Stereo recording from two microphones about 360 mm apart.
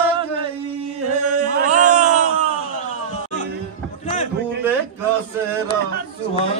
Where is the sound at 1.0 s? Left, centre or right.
Centre.